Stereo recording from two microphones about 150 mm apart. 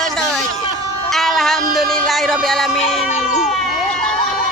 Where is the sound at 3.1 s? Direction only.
50° left (ahead or behind).